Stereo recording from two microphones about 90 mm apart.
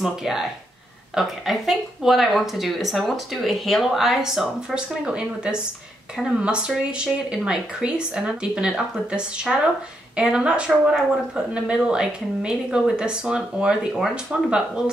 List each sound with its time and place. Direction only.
0.0 s speech: 5° right (ahead or behind)